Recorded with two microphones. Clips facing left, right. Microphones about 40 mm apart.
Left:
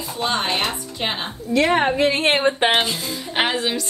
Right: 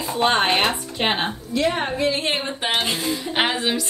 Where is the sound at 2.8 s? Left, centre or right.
Right.